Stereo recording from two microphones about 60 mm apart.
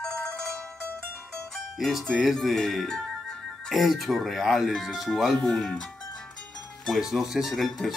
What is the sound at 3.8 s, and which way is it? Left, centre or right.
Speech, centre.